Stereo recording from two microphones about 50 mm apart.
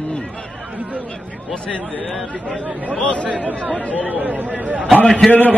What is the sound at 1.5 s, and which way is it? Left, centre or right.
Speech, left.